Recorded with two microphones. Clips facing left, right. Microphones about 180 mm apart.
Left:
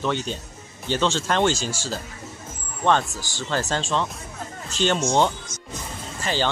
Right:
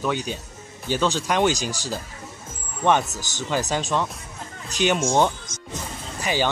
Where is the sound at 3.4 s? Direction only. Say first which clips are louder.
Right 1 dB; 15° right (ahead or behind).